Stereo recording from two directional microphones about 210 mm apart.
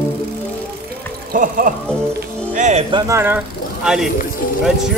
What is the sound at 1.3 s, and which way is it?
Music, 40° right (ahead or behind).